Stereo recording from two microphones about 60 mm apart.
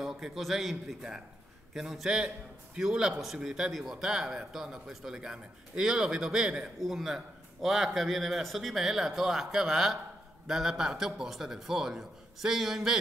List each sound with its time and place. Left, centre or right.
0.0 s a man's voice: centre